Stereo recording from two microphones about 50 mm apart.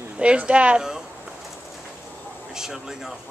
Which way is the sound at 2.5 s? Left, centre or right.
Centre.